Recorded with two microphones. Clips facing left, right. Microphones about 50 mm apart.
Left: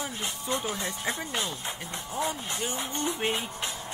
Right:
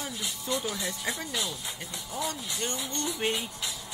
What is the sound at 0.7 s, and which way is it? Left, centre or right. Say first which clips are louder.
Music: left 1 dB; left.